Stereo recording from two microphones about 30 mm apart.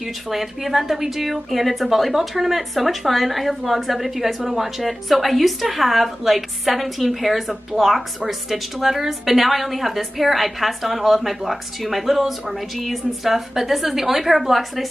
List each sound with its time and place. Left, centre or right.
0.3 s a woman's voice: centre